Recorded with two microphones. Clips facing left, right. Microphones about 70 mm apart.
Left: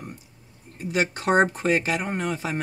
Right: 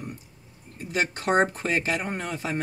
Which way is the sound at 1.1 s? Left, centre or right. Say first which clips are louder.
Left 2 dB; centre.